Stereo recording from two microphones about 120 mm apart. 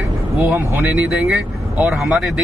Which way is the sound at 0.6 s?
15° right (ahead or behind).